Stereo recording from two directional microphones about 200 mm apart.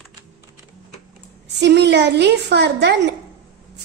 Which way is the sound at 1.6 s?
60° right (ahead or behind).